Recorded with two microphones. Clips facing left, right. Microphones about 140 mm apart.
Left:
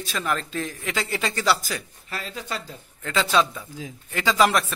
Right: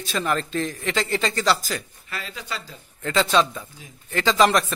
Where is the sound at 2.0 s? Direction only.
40° left (ahead or behind).